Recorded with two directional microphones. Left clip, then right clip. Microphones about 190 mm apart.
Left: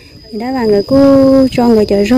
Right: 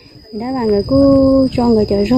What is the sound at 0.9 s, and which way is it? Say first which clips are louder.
Speech: left 3 dB; 10° left (ahead or behind).